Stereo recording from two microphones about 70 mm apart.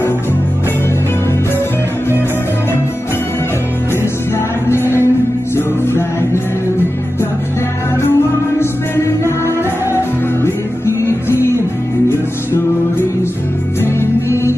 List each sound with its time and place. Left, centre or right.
4.6 s music: left
8.5 s music: left
13.9 s music: left